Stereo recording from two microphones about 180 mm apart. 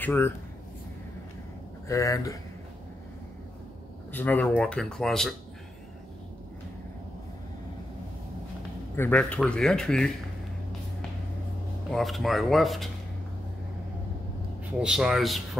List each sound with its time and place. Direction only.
0.0 s speech: 10° left (ahead or behind)
1.9 s speech: 15° left (ahead or behind)
4.1 s speech: 10° left (ahead or behind)
8.9 s speech: 10° left (ahead or behind)
11.9 s speech: centre (ahead or behind)
14.8 s speech: 5° right (ahead or behind)